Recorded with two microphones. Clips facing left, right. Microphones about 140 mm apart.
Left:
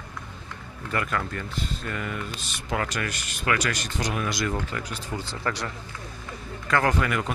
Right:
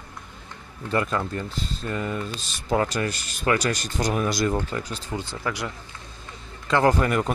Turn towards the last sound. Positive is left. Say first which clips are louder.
# right 4 dB
turn(degrees=-30)  # may be behind; listen again after turning